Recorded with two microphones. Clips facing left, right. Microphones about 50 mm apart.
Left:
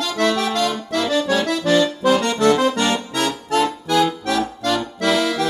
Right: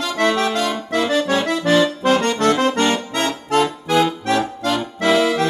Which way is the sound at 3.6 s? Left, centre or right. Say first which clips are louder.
Right 1 dB; right.